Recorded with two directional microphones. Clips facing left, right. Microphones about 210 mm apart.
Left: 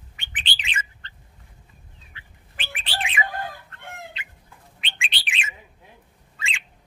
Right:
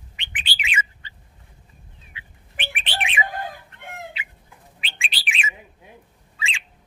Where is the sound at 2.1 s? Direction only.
15° right (ahead or behind).